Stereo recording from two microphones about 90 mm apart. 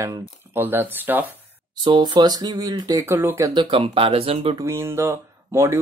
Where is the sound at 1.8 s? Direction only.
55° right (ahead or behind).